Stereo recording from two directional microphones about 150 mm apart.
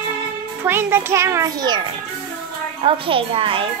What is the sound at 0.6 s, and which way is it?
A child's voice, 15° right (ahead or behind).